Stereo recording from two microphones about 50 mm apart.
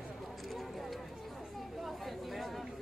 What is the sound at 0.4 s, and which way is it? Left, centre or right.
Clip-clop, centre.